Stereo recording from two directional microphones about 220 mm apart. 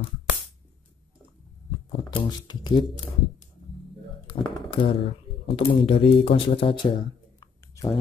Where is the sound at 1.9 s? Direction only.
20° left (ahead or behind).